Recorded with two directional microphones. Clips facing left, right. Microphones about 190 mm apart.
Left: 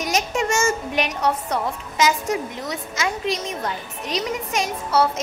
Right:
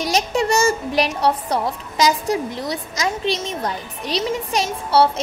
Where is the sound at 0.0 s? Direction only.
35° right (ahead or behind).